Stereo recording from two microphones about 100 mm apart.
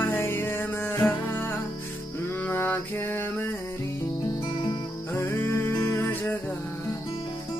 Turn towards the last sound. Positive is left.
turn(degrees=20)  # may be behind; listen again after turning